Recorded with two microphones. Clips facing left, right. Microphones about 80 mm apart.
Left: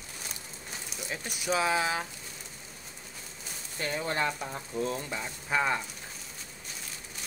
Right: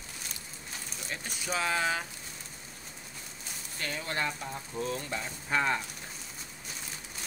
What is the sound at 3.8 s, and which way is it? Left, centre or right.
Speech, left.